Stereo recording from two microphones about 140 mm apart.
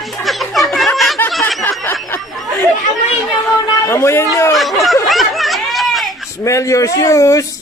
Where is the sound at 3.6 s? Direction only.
20° left (ahead or behind).